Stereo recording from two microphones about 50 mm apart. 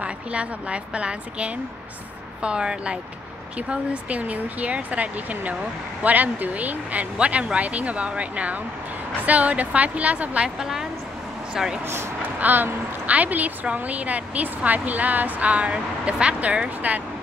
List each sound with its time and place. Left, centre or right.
0.0 s speech: right
10.6 s a woman's voice: centre
12.2 s a woman's voice: right